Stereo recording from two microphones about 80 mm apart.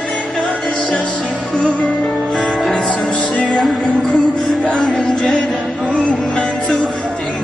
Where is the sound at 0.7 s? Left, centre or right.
Centre.